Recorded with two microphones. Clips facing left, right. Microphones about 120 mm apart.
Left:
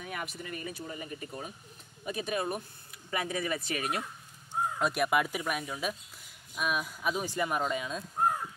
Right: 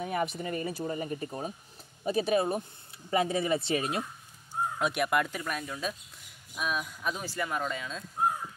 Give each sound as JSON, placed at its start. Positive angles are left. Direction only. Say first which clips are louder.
{"t": 0.0, "sound": "a sound", "louder": "right 8 dB", "side_deg": -35}
{"t": 0.4, "sound": "speech", "louder": "right 7 dB", "side_deg": -35}
{"t": 4.7, "sound": "speech", "louder": "even", "side_deg": 0}
{"t": 7.2, "sound": "speech", "louder": "left 2 dB", "side_deg": 20}